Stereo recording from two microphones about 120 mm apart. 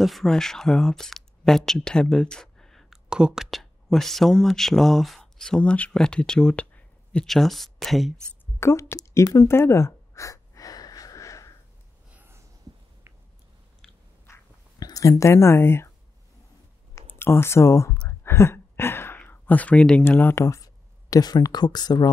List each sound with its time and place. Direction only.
0.0 s speech: centre (ahead or behind)
8.5 s speech: 20° left (ahead or behind)
9.5 s gasp: 20° left (ahead or behind)
12.1 s a sound: 20° right (ahead or behind)
14.2 s a sound: 25° left (ahead or behind)
14.9 s speech: 30° left (ahead or behind)
17.1 s speech: 20° left (ahead or behind); by 22.1 s 35° left (ahead or behind)